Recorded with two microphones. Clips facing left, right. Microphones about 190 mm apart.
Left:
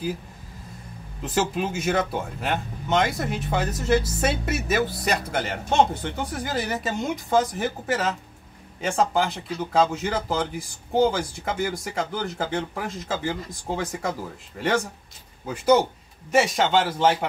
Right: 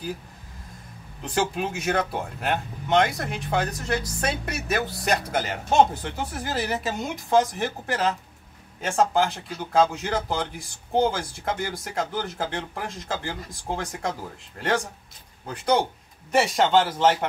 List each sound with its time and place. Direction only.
1.2 s speech: centre (ahead or behind)
15.4 s speech: 5° left (ahead or behind)